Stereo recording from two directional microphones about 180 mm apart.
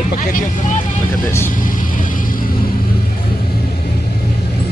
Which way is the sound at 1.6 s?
50° left (ahead or behind).